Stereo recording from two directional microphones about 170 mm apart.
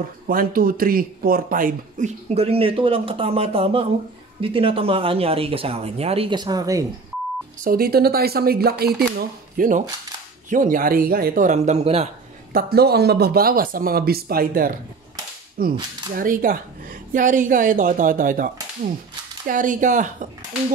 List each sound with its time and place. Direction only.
0.3 s speech: 55° right (ahead or behind); by 6.8 s 20° right (ahead or behind)
7.6 s a woman's voice: 60° right (ahead or behind); by 12.1 s 40° right (ahead or behind)
12.5 s a woman's voice: 65° right (ahead or behind); by 20.2 s 50° right (ahead or behind)